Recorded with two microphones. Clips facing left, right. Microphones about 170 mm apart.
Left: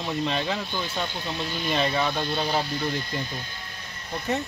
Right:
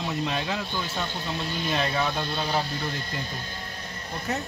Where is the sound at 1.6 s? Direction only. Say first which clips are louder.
Left 2 dB; centre (ahead or behind).